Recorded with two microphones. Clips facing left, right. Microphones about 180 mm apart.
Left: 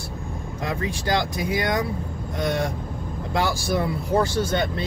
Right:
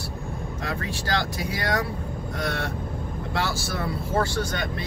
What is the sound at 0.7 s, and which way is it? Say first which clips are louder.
Speech: left 4 dB; 20° left (ahead or behind).